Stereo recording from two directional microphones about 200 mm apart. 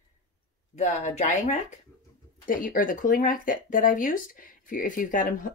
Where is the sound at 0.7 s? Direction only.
35° left (ahead or behind).